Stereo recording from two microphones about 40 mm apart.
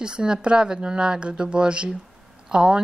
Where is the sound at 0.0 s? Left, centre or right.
Right.